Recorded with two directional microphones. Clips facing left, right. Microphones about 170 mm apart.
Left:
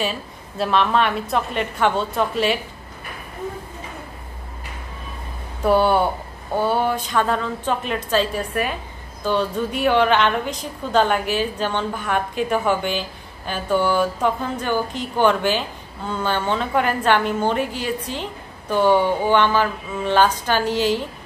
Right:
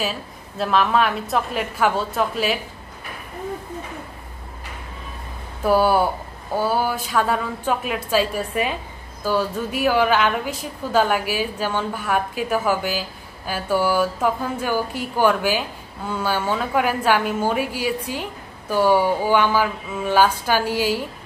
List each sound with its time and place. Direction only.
0.0 s a woman's voice: centre (ahead or behind)
5.6 s a woman's voice: 5° right (ahead or behind)